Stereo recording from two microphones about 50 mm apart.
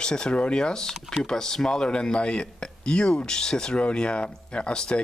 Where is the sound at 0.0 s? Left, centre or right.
Centre.